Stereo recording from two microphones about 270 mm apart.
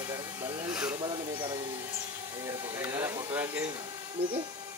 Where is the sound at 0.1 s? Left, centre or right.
Centre.